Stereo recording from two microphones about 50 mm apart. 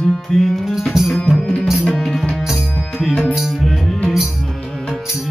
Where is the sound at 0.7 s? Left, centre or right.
Centre.